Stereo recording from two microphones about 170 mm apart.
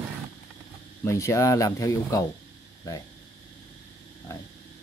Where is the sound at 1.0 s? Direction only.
15° left (ahead or behind).